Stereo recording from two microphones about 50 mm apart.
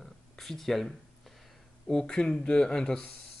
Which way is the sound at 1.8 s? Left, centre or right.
Centre.